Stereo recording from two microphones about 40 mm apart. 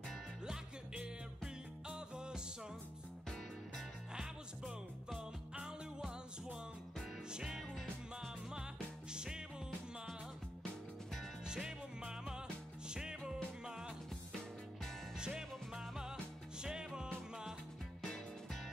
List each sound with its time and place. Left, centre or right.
0.9 s music: right
7.3 s music: centre
11.4 s music: centre
15.1 s music: centre